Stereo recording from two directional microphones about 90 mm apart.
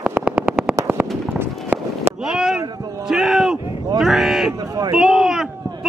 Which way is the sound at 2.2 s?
5° right (ahead or behind).